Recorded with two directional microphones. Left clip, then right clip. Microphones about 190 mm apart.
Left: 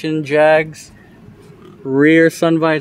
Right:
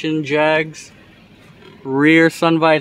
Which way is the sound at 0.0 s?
5° left (ahead or behind).